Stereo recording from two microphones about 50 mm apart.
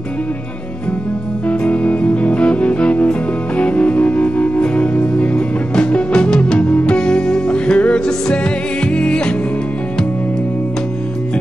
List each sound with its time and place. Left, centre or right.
1.5 s music: left